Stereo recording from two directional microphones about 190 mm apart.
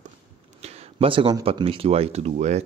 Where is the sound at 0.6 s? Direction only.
30° right (ahead or behind).